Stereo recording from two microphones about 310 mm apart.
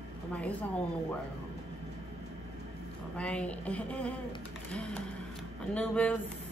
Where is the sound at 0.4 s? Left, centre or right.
Centre.